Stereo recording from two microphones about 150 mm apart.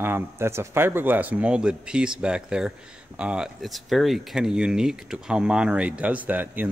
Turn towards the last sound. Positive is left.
turn(degrees=-10)  # may be behind; listen again after turning